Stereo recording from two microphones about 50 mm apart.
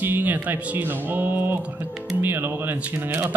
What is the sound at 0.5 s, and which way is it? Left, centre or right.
Speech, right.